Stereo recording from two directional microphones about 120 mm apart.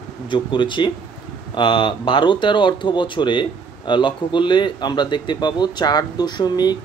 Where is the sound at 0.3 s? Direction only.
40° left (ahead or behind).